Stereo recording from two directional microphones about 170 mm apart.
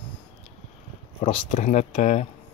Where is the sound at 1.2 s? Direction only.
35° left (ahead or behind).